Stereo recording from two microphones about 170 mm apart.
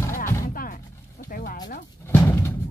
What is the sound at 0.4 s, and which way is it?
Music, 55° left (ahead or behind).